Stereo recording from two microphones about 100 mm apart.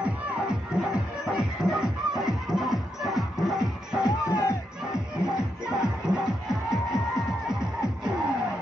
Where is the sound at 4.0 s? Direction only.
35° left (ahead or behind).